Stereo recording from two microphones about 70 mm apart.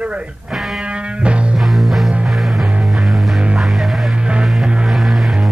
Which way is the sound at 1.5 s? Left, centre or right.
Centre.